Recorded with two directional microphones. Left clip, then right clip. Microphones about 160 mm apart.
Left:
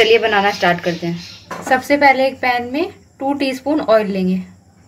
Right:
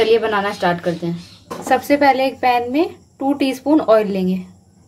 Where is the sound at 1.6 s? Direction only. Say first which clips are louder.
Left 2 dB; 30° right (ahead or behind).